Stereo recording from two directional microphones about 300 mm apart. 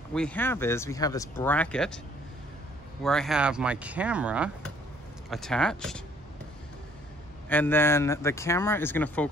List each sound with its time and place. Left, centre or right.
0.1 s speech: centre
3.0 s speech: centre
7.4 s speech: centre